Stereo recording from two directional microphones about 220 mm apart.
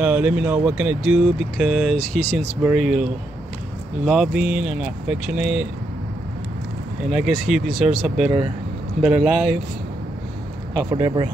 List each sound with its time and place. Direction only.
0.0 s speech: 5° right (ahead or behind)
7.1 s speech: centre (ahead or behind)
10.9 s speech: 20° right (ahead or behind)